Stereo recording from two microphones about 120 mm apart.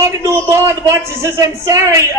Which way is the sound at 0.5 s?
25° right (ahead or behind).